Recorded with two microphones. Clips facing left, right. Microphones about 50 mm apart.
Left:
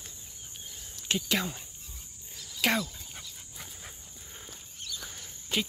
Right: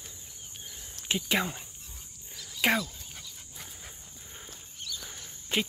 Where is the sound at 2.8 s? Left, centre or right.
Centre.